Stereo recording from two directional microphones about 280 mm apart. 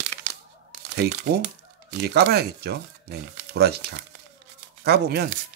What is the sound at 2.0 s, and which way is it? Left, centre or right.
Speech, right.